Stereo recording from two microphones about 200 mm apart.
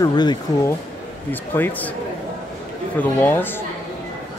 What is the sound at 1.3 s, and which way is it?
Speech, 10° left (ahead or behind).